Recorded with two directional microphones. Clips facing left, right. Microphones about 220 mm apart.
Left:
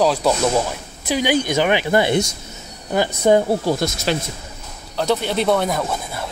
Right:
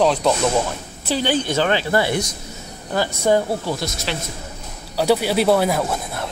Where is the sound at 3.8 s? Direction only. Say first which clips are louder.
Left 5 dB; 45° left (ahead or behind).